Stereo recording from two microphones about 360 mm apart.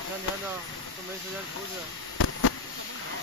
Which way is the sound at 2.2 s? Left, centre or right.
Left.